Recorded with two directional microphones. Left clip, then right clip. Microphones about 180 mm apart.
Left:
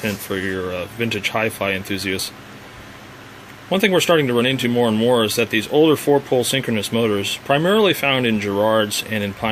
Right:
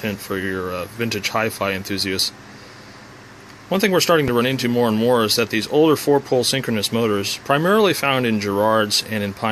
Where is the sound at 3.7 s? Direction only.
Centre (ahead or behind).